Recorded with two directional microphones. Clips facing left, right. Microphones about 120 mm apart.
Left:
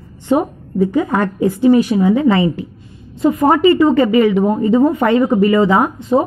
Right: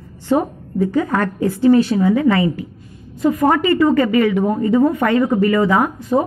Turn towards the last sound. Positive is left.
turn(degrees=25)  # may be behind; listen again after turning